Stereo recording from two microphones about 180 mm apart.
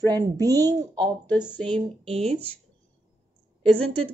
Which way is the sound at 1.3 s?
10° left (ahead or behind).